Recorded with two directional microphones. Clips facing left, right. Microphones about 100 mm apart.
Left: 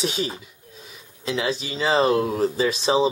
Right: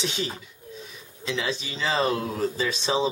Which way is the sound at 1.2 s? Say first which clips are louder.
Left 4 dB; 40° left (ahead or behind).